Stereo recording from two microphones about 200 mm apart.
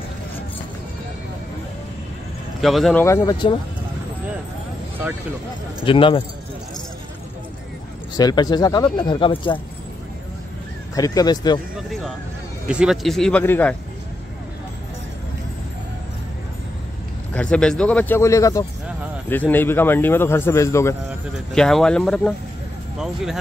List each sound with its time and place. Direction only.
2.6 s a man's voice: centre (ahead or behind); by 3.5 s 20° left (ahead or behind)
5.9 s speech: 25° left (ahead or behind)
8.2 s speech: 20° left (ahead or behind)
11.0 s speech: 20° left (ahead or behind)
11.7 s speech: centre (ahead or behind)
17.3 s a man's voice: 5° left (ahead or behind)
21.5 s speech: centre (ahead or behind)